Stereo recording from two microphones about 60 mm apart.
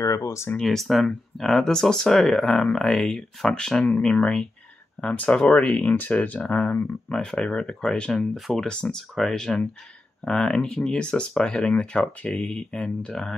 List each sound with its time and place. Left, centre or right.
0.0 s speech: left
0.6 s speech: centre; by 6.9 s left
7.1 s speech: centre
8.4 s speech: centre
8.6 s speech: centre